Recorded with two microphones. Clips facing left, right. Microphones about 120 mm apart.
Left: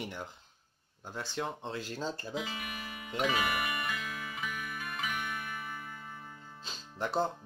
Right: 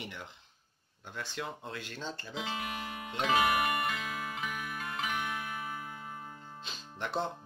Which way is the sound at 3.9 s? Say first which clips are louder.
Right 2 dB; 25° right (ahead or behind).